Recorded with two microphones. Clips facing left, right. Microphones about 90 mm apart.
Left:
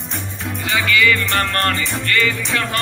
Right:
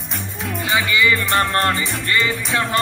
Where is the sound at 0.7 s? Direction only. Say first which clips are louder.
Left 1 dB; 20° right (ahead or behind).